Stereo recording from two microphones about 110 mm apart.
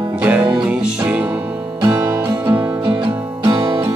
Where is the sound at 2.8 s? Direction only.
45° right (ahead or behind).